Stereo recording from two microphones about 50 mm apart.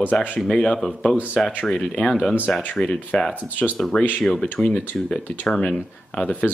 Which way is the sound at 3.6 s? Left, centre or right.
Left.